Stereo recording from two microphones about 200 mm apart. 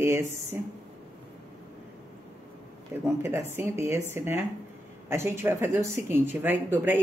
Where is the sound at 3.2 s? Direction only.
10° right (ahead or behind).